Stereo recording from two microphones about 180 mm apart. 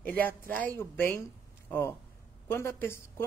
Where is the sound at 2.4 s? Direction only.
10° left (ahead or behind).